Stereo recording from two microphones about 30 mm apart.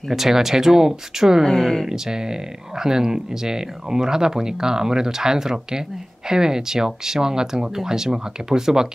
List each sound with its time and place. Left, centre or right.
0.1 s speech: centre
1.4 s speech: centre
1.9 s speech: right